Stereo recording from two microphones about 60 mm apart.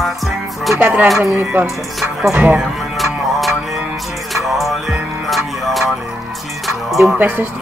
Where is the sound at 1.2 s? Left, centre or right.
Right.